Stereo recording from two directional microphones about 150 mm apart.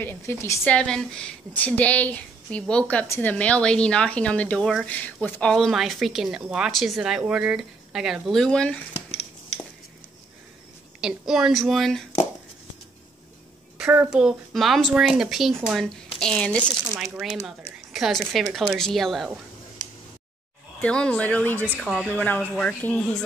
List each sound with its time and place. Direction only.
0.0 s a woman's voice: 15° left (ahead or behind)
0.7 s a woman's voice: 5° left (ahead or behind)
11.0 s speech: 5° right (ahead or behind)
13.7 s speech: 5° right (ahead or behind)
20.8 s a woman's voice: 5° left (ahead or behind)